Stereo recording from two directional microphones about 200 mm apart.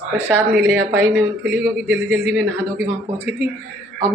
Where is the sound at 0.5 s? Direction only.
10° right (ahead or behind).